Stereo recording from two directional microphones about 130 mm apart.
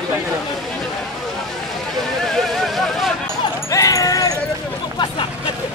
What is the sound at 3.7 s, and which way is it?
Sheep, 25° left (ahead or behind).